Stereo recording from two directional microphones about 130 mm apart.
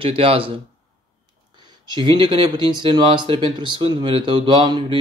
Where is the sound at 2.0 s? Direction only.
40° right (ahead or behind).